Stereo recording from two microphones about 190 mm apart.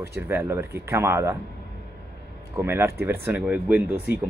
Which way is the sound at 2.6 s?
10° right (ahead or behind).